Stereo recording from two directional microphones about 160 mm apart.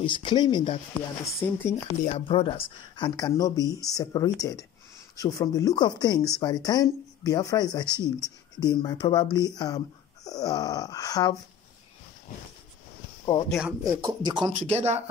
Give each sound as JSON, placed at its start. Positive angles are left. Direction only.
{"t": 0.0, "sound": "speech", "side_deg": 30}
{"t": 1.2, "sound": "speech", "side_deg": 15}
{"t": 2.0, "sound": "speech", "side_deg": 35}
{"t": 7.9, "sound": "speech", "side_deg": -20}
{"t": 8.5, "sound": "speech", "side_deg": 25}
{"t": 13.5, "sound": "speech", "side_deg": -5}
{"t": 14.0, "sound": "speech", "side_deg": -30}
{"t": 14.7, "sound": "speech", "side_deg": -40}